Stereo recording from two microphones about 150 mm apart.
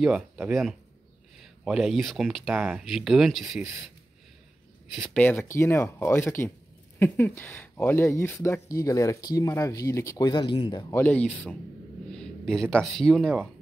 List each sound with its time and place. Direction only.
0.5 s speech: centre (ahead or behind)
4.9 s speech: 10° left (ahead or behind); by 10.9 s 30° left (ahead or behind)
10.9 s speech: 10° left (ahead or behind)